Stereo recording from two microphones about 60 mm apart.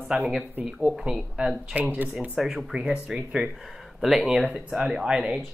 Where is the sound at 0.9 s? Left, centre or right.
Centre.